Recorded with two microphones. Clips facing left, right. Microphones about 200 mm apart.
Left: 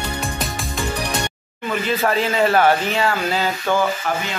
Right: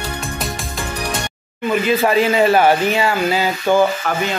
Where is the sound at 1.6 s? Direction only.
15° right (ahead or behind).